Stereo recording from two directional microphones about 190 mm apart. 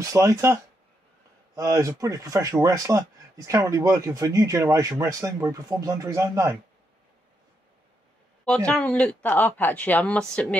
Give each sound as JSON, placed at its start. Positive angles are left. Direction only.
{"t": 0.1, "sound": "speech", "side_deg": -15}
{"t": 8.5, "sound": "speech", "side_deg": 5}